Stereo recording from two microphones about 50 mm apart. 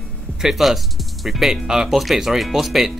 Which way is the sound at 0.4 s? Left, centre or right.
Centre.